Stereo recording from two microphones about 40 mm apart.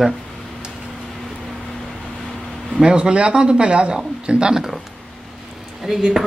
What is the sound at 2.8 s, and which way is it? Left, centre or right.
Speech, right.